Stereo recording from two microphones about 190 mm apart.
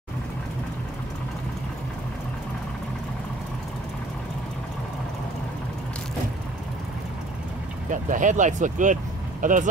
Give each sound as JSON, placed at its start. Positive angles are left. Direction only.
{"t": 7.9, "sound": "speech", "side_deg": -40}